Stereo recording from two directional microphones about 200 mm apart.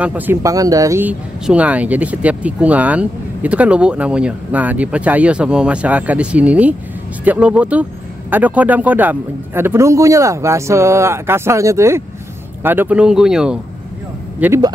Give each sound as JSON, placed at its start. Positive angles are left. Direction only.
{"t": 0.0, "sound": "speech", "side_deg": -10}